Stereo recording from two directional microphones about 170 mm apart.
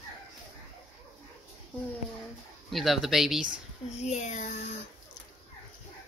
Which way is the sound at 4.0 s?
40° left (ahead or behind).